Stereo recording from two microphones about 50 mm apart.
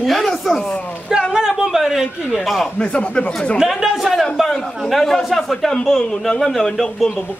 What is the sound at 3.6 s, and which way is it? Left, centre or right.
A man's voice, centre.